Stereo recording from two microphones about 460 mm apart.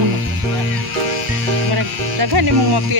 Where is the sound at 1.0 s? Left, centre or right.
Right.